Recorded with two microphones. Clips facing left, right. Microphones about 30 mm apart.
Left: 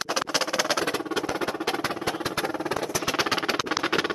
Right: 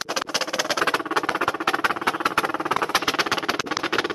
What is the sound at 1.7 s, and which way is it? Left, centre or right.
Music, right.